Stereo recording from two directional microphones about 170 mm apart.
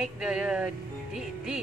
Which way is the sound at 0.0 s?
5° right (ahead or behind).